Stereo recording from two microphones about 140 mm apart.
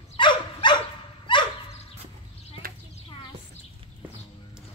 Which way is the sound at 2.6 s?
90° right.